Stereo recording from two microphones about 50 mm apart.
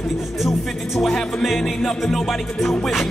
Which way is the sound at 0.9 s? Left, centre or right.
Centre.